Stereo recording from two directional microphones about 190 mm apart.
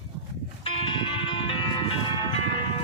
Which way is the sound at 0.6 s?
30° left (ahead or behind).